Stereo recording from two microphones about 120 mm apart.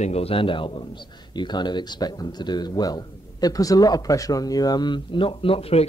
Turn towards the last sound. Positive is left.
turn(degrees=55)  # may be behind; listen again after turning